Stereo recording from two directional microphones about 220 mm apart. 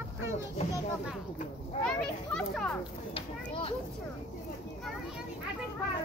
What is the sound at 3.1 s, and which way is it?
Speech, 25° left (ahead or behind).